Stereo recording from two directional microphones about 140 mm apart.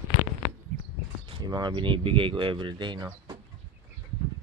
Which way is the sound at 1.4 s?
30° right (ahead or behind).